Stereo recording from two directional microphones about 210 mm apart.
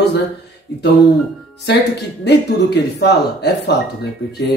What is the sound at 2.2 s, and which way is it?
Speech, 55° left (ahead or behind).